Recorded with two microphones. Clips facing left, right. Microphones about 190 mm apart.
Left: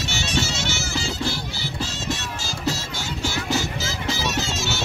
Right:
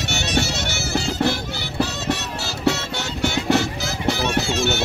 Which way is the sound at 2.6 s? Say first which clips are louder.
Right 6 dB; 65° right (ahead or behind).